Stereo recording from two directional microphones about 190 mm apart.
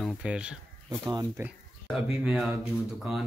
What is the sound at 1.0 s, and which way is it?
Speech, 15° right (ahead or behind).